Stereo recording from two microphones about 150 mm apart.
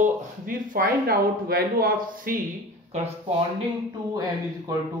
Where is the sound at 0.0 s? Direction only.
70° right (ahead or behind).